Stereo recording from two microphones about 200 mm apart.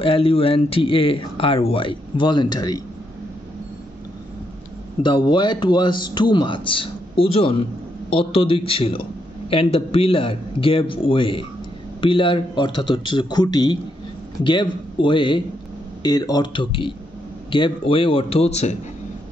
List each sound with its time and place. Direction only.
0.0 s speech: 25° left (ahead or behind)
5.0 s speech: 25° left (ahead or behind)